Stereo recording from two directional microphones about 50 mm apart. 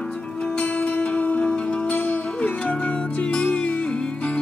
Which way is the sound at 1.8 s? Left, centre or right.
Left.